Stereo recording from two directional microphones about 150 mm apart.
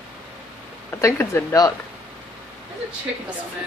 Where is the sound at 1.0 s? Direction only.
20° left (ahead or behind).